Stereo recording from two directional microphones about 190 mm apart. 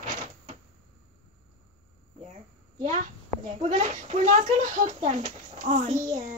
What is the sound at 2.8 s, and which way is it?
Speech, 40° right (ahead or behind).